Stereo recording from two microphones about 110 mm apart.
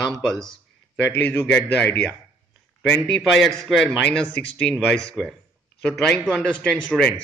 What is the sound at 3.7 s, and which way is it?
A man's voice, 5° left (ahead or behind).